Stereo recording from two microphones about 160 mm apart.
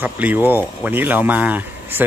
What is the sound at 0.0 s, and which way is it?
Speech, 10° right (ahead or behind).